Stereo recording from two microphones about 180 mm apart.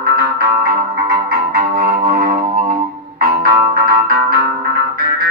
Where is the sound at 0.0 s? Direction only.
55° right (ahead or behind).